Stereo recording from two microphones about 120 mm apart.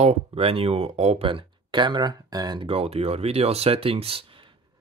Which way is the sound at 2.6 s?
55° right (ahead or behind).